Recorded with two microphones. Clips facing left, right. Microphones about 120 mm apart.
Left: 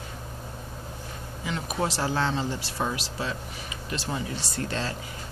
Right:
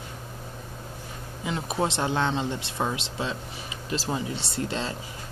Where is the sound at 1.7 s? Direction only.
25° right (ahead or behind).